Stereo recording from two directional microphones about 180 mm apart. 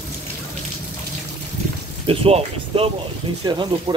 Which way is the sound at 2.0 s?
30° right (ahead or behind).